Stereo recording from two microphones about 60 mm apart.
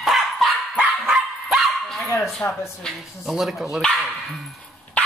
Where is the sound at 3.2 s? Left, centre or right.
Centre.